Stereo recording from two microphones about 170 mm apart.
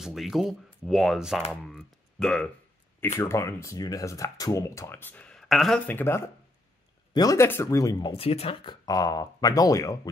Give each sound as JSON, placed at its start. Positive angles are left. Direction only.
{"t": 0.0, "sound": "speech", "side_deg": 0}
{"t": 3.0, "sound": "speech", "side_deg": 15}
{"t": 5.9, "sound": "speech", "side_deg": 15}
{"t": 8.1, "sound": "speech", "side_deg": 35}
{"t": 8.8, "sound": "speech", "side_deg": 20}